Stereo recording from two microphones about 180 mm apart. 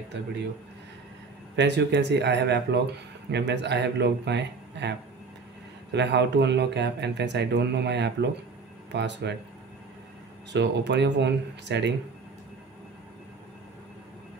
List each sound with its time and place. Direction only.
1.6 s speech: 70° right (ahead or behind)
10.5 s speech: 75° right (ahead or behind)